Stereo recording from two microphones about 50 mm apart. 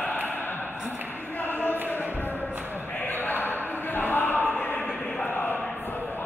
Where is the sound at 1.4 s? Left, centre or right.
Left.